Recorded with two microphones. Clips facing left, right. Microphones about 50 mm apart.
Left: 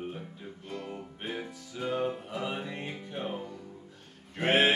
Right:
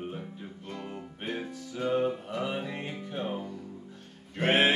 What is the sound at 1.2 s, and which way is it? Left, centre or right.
Music, centre.